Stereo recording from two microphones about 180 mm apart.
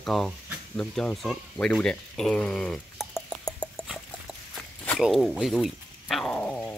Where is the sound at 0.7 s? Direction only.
5° left (ahead or behind).